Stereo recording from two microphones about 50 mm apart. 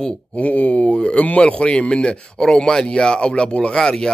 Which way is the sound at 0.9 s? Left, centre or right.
Centre.